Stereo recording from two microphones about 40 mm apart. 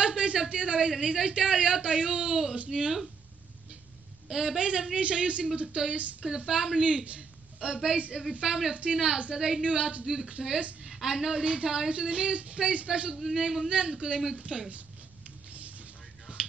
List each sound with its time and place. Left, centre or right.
0.0 s a sound: right
1.0 s speech: right
4.3 s a woman's voice: centre
13.2 s speech: centre
13.7 s speech: right